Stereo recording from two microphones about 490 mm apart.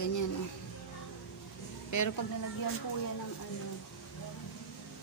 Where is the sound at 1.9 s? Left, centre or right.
Left.